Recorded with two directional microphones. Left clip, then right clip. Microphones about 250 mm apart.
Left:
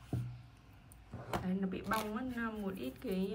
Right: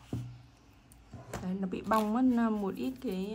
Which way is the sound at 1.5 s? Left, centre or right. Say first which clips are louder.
Right 9 dB; centre.